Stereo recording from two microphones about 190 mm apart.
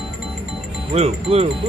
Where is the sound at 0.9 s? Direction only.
35° right (ahead or behind).